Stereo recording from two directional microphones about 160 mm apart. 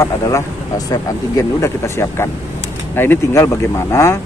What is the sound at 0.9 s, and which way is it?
Speech, 20° left (ahead or behind).